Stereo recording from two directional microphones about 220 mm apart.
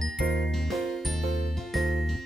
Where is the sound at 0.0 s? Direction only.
Centre (ahead or behind).